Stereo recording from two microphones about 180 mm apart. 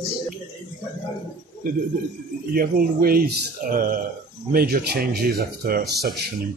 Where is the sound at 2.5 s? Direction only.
55° right (ahead or behind).